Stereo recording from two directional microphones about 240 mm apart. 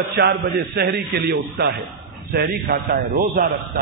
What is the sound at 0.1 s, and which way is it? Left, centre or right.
A man's voice, right.